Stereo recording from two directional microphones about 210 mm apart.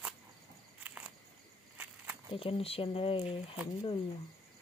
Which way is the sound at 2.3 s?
25° left (ahead or behind).